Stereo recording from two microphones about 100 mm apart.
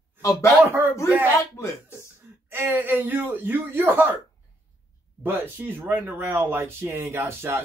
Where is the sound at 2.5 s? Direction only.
20° right (ahead or behind).